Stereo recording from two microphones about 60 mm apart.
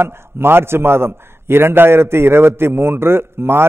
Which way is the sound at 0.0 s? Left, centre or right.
Right.